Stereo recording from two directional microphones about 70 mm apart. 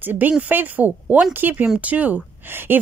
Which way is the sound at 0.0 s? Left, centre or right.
Right.